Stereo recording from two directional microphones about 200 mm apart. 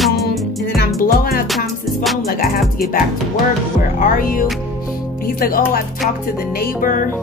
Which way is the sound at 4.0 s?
45° left (ahead or behind).